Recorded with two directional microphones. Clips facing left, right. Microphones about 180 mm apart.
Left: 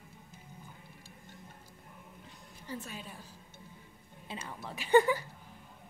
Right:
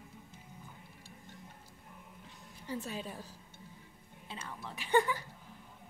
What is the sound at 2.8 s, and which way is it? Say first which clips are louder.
Speech: right 5 dB; 35° right (ahead or behind).